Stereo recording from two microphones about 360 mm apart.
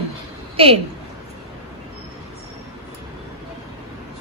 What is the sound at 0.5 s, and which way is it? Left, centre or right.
Speech, centre.